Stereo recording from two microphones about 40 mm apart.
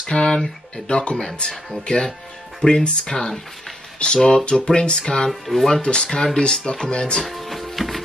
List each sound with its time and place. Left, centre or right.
0.0 s a sound: left
0.8 s speech: left
1.1 s speech: centre
2.6 s speech: centre
5.3 s speech: centre
5.7 s speech: left
7.2 s music: centre